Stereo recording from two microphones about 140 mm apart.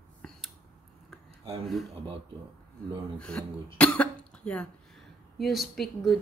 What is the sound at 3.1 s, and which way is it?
Speech, 10° left (ahead or behind).